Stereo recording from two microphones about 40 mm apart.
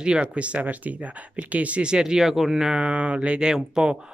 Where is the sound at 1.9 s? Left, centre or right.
Centre.